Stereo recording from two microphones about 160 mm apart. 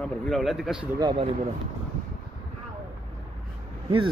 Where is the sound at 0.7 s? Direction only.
30° right (ahead or behind).